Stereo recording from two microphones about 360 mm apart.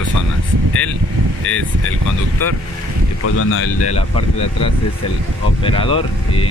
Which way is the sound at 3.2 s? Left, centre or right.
Left.